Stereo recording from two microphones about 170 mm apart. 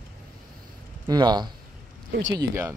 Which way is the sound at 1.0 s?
25° right (ahead or behind).